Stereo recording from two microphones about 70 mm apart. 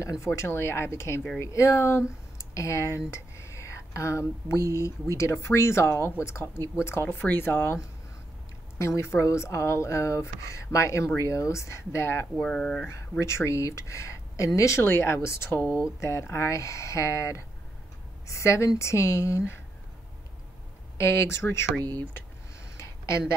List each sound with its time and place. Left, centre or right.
0.0 s speech: left
0.3 s speech: left
8.7 s speech: left
12.4 s speech: centre
13.2 s speech: left
21.0 s speech: left
22.8 s a sound: left